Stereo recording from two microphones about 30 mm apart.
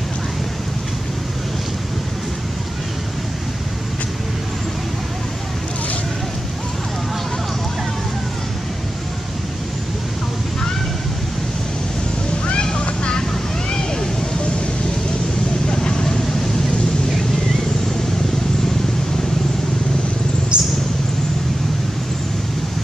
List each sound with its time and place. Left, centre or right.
12.7 s vehicle: left
15.7 s vehicle: left
20.5 s a sound: right